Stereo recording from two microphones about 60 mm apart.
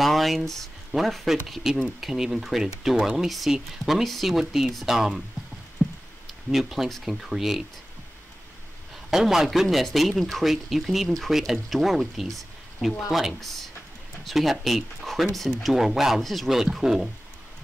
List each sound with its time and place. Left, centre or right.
0.0 s speech: centre
5.8 s a sound: centre
6.5 s speech: centre
9.1 s speech: centre